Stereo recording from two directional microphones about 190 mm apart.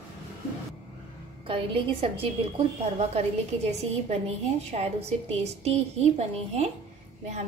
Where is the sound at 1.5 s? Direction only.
30° right (ahead or behind).